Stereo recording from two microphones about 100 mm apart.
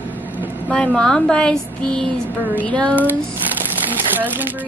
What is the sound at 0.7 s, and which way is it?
Speech, 10° left (ahead or behind).